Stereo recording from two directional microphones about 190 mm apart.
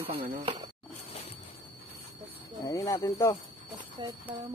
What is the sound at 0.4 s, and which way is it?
Speech, 25° right (ahead or behind).